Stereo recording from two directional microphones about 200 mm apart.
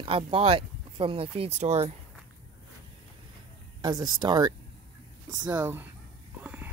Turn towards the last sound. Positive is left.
turn(degrees=-10)  # may be behind; listen again after turning